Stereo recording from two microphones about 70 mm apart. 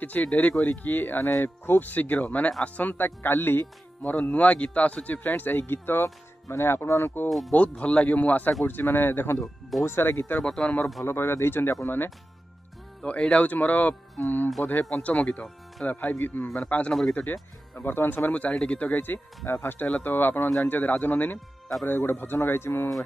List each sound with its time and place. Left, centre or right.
0.0 s a man's voice: left
4.1 s a man's voice: centre; by 7.2 s left
7.2 s speech: centre
7.5 s a man's voice: centre
9.4 s speech: centre
9.8 s speech: left
10.4 s speech: centre
11.1 s speech: left
13.0 s a man's voice: centre; by 22.8 s left